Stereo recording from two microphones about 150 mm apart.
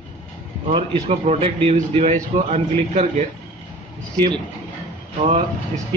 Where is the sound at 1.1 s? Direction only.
45° right (ahead or behind).